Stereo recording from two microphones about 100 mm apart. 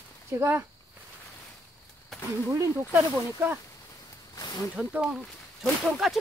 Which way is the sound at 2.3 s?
30° right (ahead or behind).